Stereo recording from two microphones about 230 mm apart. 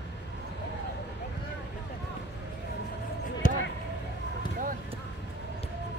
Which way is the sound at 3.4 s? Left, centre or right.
Left.